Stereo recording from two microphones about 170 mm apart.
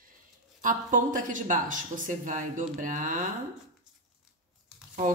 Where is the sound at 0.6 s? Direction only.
50° right (ahead or behind).